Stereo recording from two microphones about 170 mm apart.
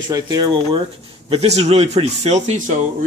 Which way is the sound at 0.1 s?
25° right (ahead or behind).